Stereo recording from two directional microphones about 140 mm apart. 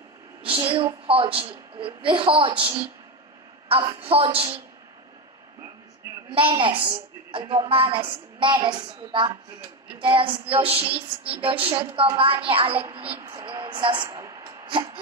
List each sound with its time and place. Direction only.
0.4 s a woman's voice: 40° right (ahead or behind)
6.5 s a woman's voice: 35° right (ahead or behind)
13.5 s a sound: 35° right (ahead or behind)